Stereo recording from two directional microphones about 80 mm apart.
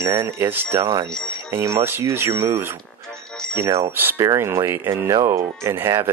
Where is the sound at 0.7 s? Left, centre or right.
Right.